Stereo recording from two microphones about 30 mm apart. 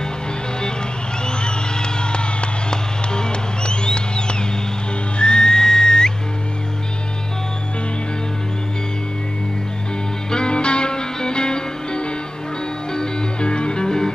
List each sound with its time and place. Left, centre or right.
1.2 s a sound: left
5.2 s whistle: left
10.3 s music: left